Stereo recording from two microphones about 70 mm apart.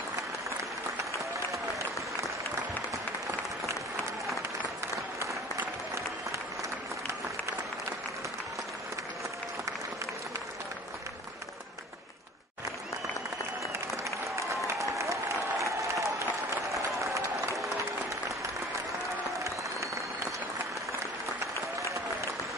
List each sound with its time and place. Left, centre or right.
14.5 s applause: right
16.7 s run: right